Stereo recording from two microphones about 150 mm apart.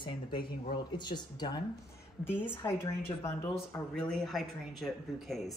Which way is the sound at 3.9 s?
5° left (ahead or behind).